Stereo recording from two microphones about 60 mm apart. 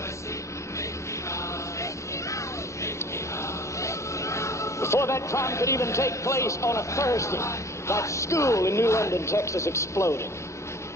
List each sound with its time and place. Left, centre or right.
3.8 s speech: left